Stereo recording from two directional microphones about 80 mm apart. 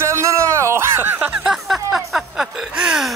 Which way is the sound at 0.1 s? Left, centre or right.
Right.